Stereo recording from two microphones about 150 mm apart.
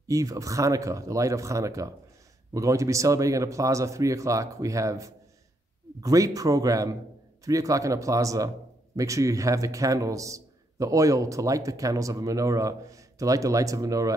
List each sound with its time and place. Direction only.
0.1 s a man's voice: 20° right (ahead or behind)